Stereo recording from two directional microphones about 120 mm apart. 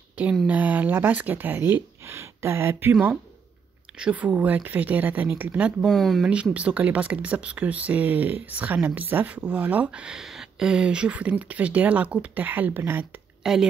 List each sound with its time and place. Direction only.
0.2 s speech: 10° right (ahead or behind)
5.9 s speech: centre (ahead or behind)
6.2 s speech: 10° right (ahead or behind)
13.4 s a sound: 5° right (ahead or behind)